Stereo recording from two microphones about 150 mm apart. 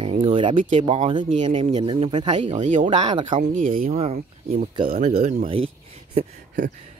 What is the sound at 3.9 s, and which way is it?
Speech, 45° right (ahead or behind).